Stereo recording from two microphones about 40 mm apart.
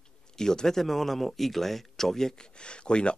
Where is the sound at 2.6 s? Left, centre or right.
Left.